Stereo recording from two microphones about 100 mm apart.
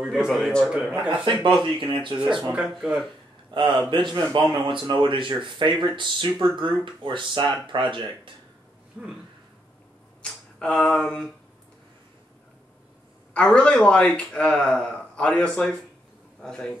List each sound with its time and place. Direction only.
0.3 s a man's voice: 5° left (ahead or behind)
0.7 s speech: 5° right (ahead or behind)
1.2 s speech: 50° right (ahead or behind)
2.5 s speech: 10° right (ahead or behind)
3.5 s speech: 50° right (ahead or behind)
9.0 s speech: 10° right (ahead or behind)
10.2 s speech: 10° left (ahead or behind)
13.3 s a man's voice: 10° left (ahead or behind)